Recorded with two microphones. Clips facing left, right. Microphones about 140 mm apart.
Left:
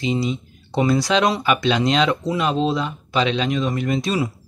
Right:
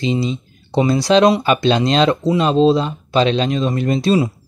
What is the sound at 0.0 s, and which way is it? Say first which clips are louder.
Speech: right 3 dB; 30° right (ahead or behind).